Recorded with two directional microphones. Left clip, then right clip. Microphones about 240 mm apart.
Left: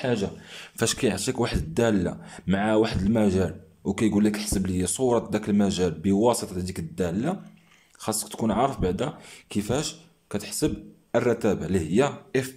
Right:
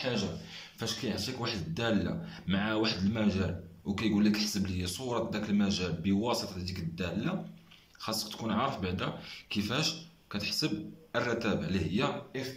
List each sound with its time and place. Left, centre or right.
0.7 s a man's voice: left